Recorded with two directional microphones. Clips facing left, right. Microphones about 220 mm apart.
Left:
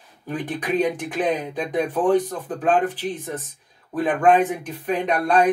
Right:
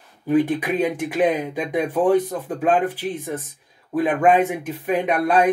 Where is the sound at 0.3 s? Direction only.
10° right (ahead or behind).